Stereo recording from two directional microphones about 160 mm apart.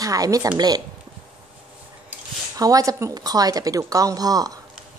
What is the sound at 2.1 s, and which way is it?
A woman's voice, 20° right (ahead or behind).